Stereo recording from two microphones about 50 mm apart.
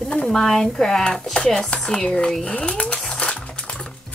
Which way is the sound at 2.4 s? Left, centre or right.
Left.